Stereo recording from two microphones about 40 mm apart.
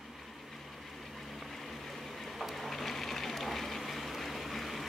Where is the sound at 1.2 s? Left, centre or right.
Centre.